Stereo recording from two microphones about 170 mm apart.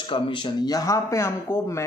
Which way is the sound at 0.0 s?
30° left (ahead or behind).